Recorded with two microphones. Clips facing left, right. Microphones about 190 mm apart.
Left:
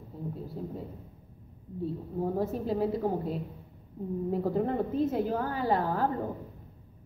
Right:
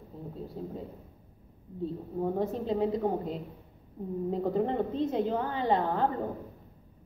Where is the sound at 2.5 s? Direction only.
20° right (ahead or behind).